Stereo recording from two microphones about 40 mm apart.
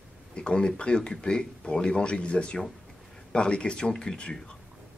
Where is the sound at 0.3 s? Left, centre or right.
Left.